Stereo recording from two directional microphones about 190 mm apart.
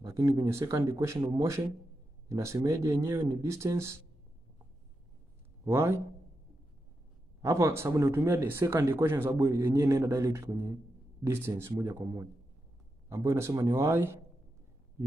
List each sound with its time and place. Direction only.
0.0 s speech: 15° right (ahead or behind)
5.7 s speech: 15° right (ahead or behind)
7.4 s speech: 15° right (ahead or behind)